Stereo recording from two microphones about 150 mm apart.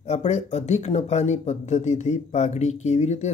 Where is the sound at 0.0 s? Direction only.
45° left (ahead or behind).